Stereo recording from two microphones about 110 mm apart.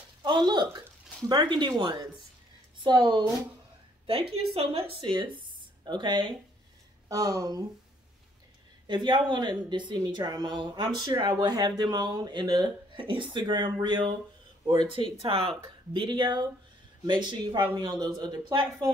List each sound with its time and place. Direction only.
0.2 s speech: 40° right (ahead or behind)
4.0 s speech: 55° right (ahead or behind)
7.1 s speech: 30° right (ahead or behind)
8.8 s speech: 45° right (ahead or behind)
14.9 s speech: 55° right (ahead or behind)